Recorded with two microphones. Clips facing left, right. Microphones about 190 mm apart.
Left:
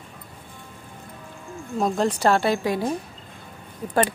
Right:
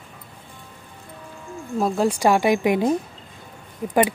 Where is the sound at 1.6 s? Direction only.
Centre (ahead or behind); by 2.9 s 20° right (ahead or behind).